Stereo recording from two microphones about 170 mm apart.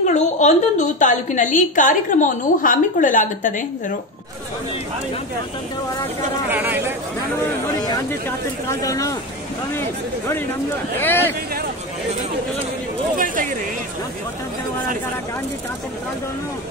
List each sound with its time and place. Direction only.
0.0 s a woman's voice: 45° left (ahead or behind)
6.5 s speech: 10° right (ahead or behind)
8.6 s speech: 20° left (ahead or behind)
11.0 s speech: 10° left (ahead or behind)